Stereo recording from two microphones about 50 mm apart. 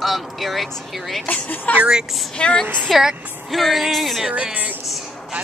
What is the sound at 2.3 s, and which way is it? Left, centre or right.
Speech, centre.